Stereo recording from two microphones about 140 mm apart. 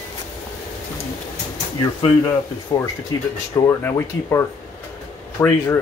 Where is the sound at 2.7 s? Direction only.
25° left (ahead or behind).